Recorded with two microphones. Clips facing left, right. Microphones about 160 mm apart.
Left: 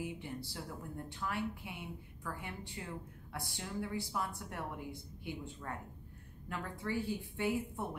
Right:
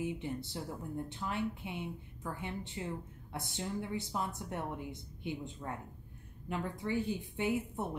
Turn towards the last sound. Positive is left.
turn(degrees=-20)  # may be behind; listen again after turning